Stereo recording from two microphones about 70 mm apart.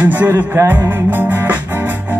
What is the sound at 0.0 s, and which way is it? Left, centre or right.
Music, right.